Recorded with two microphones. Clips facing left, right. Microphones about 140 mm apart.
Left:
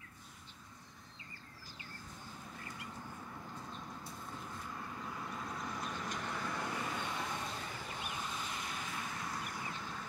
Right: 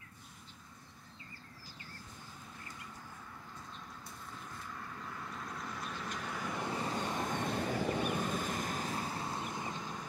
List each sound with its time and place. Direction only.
4.7 s vehicle: 10° left (ahead or behind); by 6.7 s 15° right (ahead or behind)
6.7 s vehicle: 30° right (ahead or behind)
7.3 s a sound: 60° right (ahead or behind); by 10.0 s 15° right (ahead or behind)